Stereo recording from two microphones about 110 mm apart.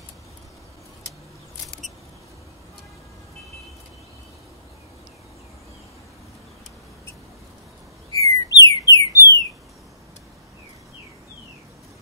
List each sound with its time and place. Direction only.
8.1 s bird: 30° left (ahead or behind)